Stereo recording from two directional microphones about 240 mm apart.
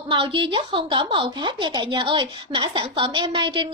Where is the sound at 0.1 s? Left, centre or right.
Right.